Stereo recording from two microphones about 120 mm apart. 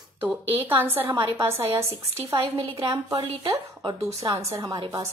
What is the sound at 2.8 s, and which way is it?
Speech, 45° right (ahead or behind).